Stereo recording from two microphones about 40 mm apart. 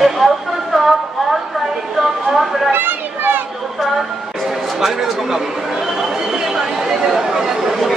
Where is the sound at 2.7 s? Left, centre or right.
Right.